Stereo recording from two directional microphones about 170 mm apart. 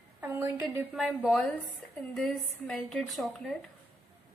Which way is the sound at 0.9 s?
Centre (ahead or behind).